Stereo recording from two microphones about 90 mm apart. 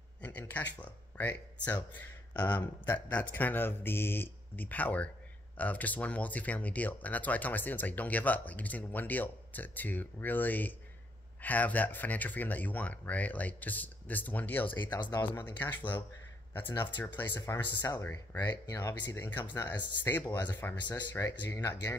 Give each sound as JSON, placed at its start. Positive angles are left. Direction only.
{"t": 0.2, "sound": "speech", "side_deg": 15}
{"t": 14.8, "sound": "speech", "side_deg": 55}
{"t": 15.6, "sound": "speech", "side_deg": 20}
{"t": 17.4, "sound": "speech", "side_deg": 35}
{"t": 17.9, "sound": "speech", "side_deg": 25}
{"t": 18.4, "sound": "speech", "side_deg": 45}
{"t": 19.1, "sound": "speech", "side_deg": 25}
{"t": 19.4, "sound": "speech", "side_deg": 45}
{"t": 20.0, "sound": "speech", "side_deg": 25}
{"t": 20.2, "sound": "speech", "side_deg": 50}
{"t": 21.2, "sound": "speech", "side_deg": 35}
{"t": 21.5, "sound": "speech", "side_deg": 50}